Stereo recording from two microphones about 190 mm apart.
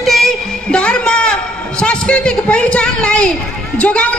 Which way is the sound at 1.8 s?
5° left (ahead or behind).